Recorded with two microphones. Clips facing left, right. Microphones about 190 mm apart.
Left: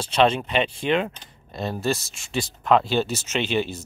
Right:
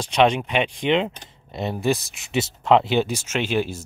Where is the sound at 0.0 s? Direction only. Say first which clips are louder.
Right 1 dB; 15° right (ahead or behind).